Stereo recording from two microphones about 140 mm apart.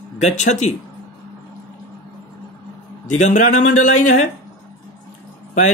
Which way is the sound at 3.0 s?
65° left (ahead or behind).